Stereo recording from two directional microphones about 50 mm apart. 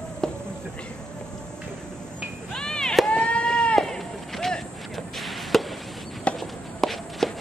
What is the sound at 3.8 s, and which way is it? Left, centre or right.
Run, centre.